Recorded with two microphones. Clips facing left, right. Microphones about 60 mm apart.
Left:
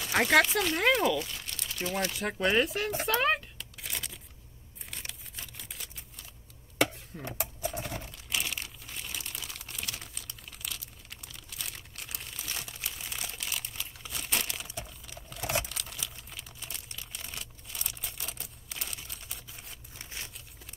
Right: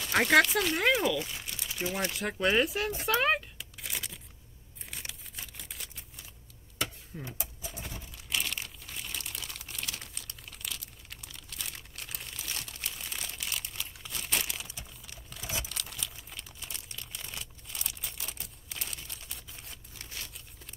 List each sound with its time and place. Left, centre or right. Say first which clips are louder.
0.0 s speech: even; centre
1.2 s speech: even; centre
3.1 s a sound: right 1 dB; centre
7.2 s sewing machine: left 12 dB; left
8.3 s crumpling: even; centre
20.0 s a sound: left 1 dB; left